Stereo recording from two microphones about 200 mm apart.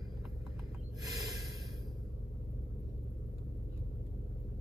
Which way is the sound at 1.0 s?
15° right (ahead or behind).